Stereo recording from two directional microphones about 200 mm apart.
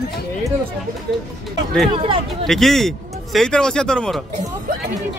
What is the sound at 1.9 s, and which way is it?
Speech, 25° right (ahead or behind).